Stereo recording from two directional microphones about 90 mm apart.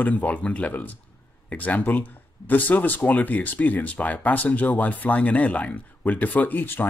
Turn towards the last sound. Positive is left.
turn(degrees=20)  # may be behind; listen again after turning